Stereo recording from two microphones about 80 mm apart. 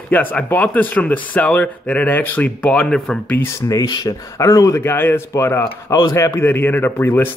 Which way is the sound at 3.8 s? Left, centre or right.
Left.